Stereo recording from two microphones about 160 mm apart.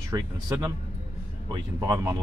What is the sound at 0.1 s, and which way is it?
Speech, 15° right (ahead or behind).